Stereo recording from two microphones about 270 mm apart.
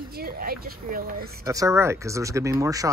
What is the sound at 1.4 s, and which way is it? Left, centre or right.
Speech, centre.